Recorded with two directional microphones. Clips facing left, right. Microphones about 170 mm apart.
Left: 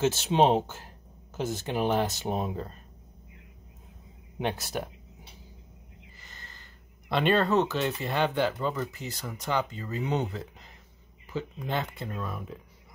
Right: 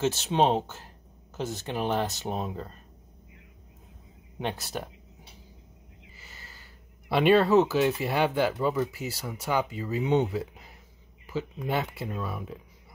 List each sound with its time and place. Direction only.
0.0 s speech: 10° left (ahead or behind)
4.4 s speech: 5° left (ahead or behind)
6.1 s speech: 5° right (ahead or behind)